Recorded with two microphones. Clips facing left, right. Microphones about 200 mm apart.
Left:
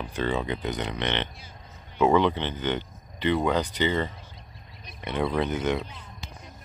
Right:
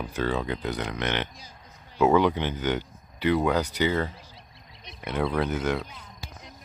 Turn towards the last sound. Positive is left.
turn(degrees=0)  # may be behind; listen again after turning